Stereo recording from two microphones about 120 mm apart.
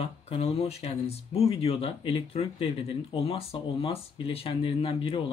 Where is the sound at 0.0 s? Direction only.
55° left (ahead or behind).